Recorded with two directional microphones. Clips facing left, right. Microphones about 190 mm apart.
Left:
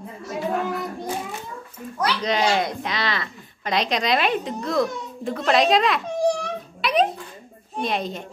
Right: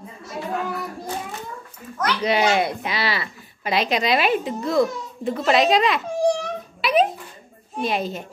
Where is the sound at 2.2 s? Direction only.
10° right (ahead or behind).